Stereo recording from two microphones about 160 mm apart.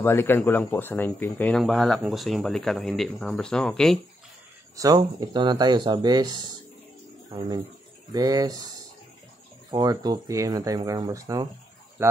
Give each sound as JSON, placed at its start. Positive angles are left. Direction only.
{"t": 0.0, "sound": "speech", "side_deg": 15}
{"t": 1.6, "sound": "speech", "side_deg": 0}
{"t": 4.7, "sound": "speech", "side_deg": -25}
{"t": 9.7, "sound": "speech", "side_deg": -25}